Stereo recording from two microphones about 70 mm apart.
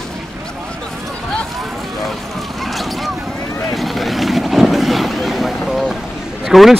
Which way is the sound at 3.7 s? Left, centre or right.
Centre.